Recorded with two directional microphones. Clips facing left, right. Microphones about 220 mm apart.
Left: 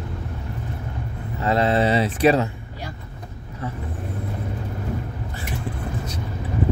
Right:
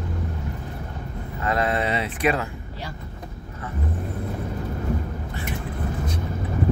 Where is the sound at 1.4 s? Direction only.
25° left (ahead or behind).